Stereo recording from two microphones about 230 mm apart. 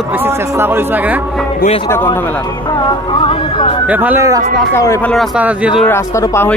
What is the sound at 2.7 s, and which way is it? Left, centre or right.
Speech, centre.